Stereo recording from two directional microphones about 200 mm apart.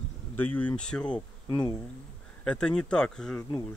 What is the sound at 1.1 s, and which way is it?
Speech, 20° left (ahead or behind).